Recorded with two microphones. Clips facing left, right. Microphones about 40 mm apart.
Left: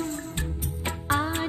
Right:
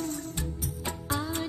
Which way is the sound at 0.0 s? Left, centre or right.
Left.